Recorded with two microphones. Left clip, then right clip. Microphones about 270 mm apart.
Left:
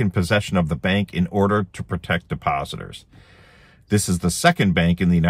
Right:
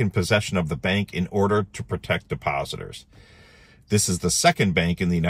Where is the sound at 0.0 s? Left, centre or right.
Centre.